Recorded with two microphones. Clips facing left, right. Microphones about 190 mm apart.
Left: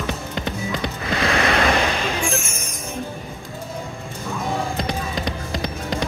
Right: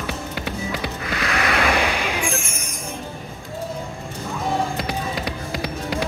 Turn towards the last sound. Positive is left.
turn(degrees=-10)  # may be behind; listen again after turning